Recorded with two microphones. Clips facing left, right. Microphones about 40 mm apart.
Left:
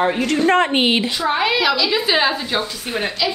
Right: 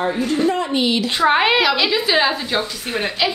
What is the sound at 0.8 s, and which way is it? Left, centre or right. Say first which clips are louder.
Speech: left 2 dB; left.